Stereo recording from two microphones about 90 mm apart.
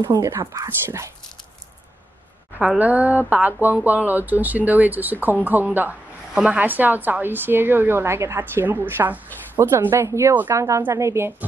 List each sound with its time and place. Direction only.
0.0 s speech: 45° right (ahead or behind)
2.8 s a woman's voice: 20° right (ahead or behind)